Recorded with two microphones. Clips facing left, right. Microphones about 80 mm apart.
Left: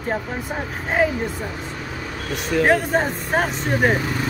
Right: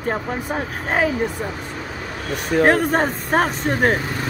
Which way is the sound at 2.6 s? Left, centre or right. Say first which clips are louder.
Right 1 dB; right.